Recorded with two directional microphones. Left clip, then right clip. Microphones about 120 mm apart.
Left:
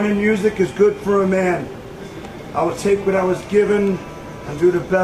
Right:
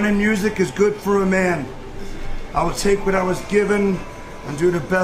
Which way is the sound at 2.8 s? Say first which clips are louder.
Left 2 dB; 35° right (ahead or behind).